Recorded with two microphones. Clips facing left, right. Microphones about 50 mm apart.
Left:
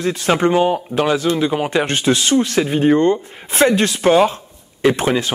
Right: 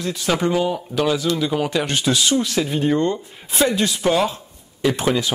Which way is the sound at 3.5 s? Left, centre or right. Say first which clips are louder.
Left 5 dB; left.